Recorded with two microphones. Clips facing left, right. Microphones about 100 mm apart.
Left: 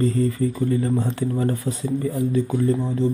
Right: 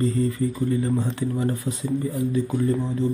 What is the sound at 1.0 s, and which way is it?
Speech, 35° left (ahead or behind).